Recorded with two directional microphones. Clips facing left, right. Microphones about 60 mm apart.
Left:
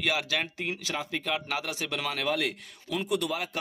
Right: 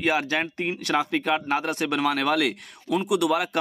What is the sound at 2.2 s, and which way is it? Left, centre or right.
Speech, right.